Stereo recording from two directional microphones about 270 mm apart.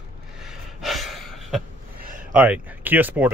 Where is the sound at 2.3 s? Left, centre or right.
Centre.